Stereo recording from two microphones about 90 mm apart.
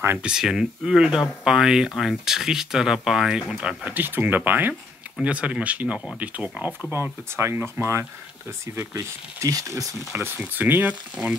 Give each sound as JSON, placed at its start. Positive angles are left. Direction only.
{"t": 0.2, "sound": "speech", "side_deg": -5}
{"t": 3.5, "sound": "speech", "side_deg": -15}
{"t": 6.9, "sound": "speech", "side_deg": -30}
{"t": 8.9, "sound": "speech", "side_deg": -40}
{"t": 10.4, "sound": "speech", "side_deg": -20}